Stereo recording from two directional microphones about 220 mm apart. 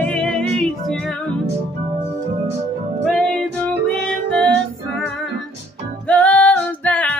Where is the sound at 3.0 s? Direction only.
5° left (ahead or behind).